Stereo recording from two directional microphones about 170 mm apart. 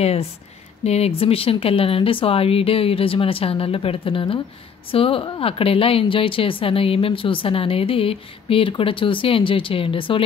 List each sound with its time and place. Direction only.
0.0 s a woman's voice: 35° left (ahead or behind)